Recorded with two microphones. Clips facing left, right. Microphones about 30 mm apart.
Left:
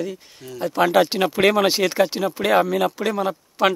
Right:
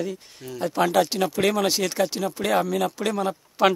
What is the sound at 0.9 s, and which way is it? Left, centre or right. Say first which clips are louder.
Speech: left 4 dB; left.